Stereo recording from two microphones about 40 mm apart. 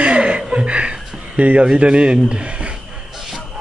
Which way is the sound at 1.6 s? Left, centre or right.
Right.